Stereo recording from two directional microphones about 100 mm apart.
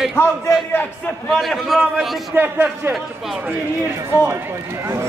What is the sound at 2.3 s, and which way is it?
Speech, 20° right (ahead or behind).